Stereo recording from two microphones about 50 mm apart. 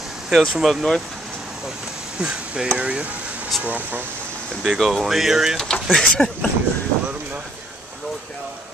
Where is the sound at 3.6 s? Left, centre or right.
Right.